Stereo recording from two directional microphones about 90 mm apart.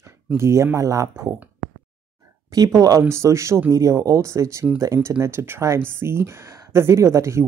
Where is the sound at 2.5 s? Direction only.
40° right (ahead or behind).